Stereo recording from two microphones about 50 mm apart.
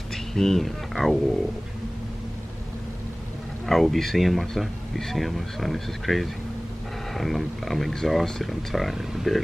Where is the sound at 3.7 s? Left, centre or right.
Centre.